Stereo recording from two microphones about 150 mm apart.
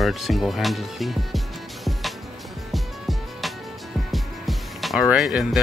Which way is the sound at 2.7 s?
Centre (ahead or behind).